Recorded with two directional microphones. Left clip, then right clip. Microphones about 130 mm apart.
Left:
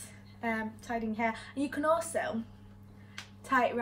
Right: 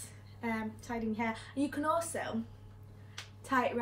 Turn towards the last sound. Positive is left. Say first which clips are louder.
# left 3 dB
turn(degrees=15)  # may be behind; listen again after turning